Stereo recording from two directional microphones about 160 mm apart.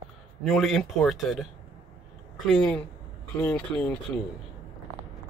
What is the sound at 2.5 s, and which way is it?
Speech, 5° left (ahead or behind).